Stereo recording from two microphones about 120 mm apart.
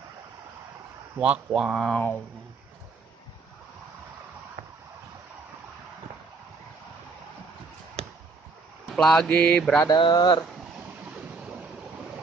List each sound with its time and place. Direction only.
1.2 s speech: 5° right (ahead or behind)
8.0 s a sound: 55° right (ahead or behind)
8.9 s mantra: 5° left (ahead or behind)
9.8 s speech: 35° left (ahead or behind)